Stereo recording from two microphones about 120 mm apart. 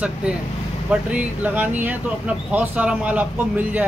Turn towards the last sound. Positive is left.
turn(degrees=-15)  # may be behind; listen again after turning